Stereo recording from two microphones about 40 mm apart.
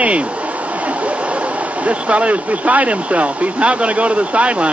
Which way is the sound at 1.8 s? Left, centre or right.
Right.